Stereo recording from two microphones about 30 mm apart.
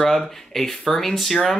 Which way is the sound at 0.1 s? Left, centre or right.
Centre.